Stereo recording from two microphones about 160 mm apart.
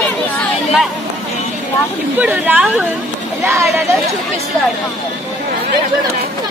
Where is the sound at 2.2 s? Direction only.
10° right (ahead or behind).